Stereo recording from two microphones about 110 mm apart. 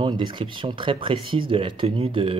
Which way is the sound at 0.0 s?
45° right (ahead or behind).